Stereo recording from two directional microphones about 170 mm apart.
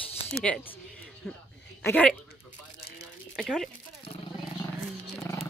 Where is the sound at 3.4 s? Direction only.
Centre (ahead or behind).